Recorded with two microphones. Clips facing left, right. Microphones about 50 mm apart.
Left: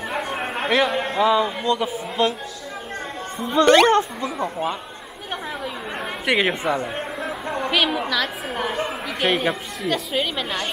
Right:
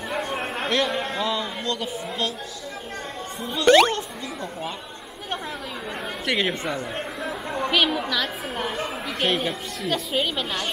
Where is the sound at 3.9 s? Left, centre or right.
Left.